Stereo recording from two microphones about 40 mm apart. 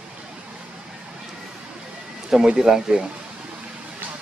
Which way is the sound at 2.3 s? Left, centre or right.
Centre.